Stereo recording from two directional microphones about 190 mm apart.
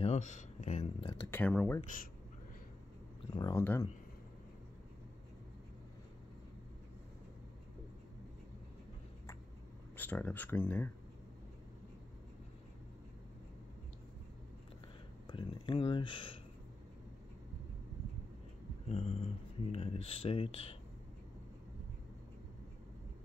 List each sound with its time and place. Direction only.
0.0 s speech: 35° left (ahead or behind)
1.3 s speech: 5° left (ahead or behind)
3.3 s speech: 20° left (ahead or behind)
9.9 s speech: 10° left (ahead or behind)
15.2 s speech: 25° left (ahead or behind)
18.9 s speech: 30° left (ahead or behind)